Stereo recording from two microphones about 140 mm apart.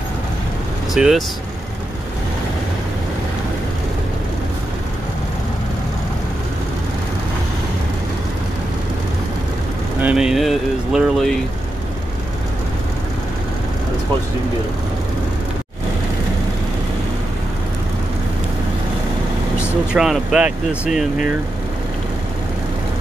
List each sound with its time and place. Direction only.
0.9 s speech: 5° right (ahead or behind)
9.9 s speech: 10° right (ahead or behind)
19.9 s speech: 5° right (ahead or behind)